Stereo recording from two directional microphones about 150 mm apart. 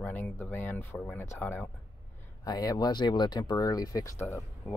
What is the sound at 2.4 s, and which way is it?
Speech, 25° left (ahead or behind).